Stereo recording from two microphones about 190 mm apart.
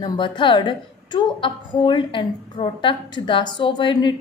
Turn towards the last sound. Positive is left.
turn(degrees=25)  # may be behind; listen again after turning